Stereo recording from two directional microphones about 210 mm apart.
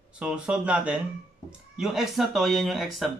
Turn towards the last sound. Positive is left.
turn(degrees=0)  # may be behind; listen again after turning